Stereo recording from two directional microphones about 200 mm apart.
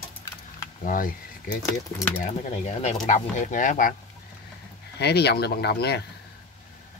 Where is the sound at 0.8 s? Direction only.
45° left (ahead or behind).